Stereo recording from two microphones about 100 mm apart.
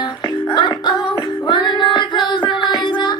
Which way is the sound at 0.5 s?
45° left (ahead or behind).